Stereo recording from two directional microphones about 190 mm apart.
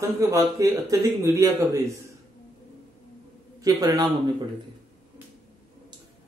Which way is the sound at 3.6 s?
20° right (ahead or behind).